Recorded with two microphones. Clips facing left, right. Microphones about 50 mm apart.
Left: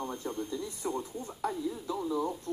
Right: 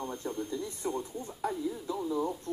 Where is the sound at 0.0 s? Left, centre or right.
Left.